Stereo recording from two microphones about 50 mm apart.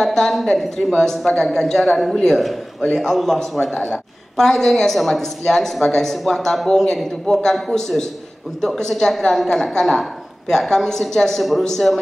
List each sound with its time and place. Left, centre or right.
0.0 s a man's voice: centre
3.7 s a man's voice: centre
4.4 s a woman's voice: centre